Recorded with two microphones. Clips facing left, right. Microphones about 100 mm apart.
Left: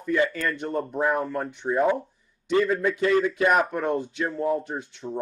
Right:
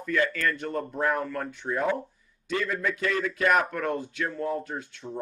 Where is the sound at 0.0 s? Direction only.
20° left (ahead or behind).